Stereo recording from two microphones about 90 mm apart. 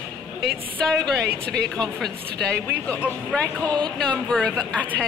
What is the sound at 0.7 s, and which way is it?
Speech, 10° left (ahead or behind).